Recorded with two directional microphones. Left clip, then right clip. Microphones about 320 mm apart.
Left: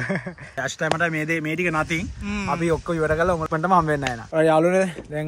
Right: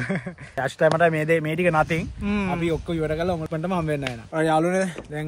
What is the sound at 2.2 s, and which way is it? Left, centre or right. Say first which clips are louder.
Speech: left 2 dB; centre.